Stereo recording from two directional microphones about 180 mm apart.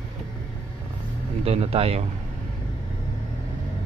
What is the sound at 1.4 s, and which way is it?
Speech, 35° right (ahead or behind).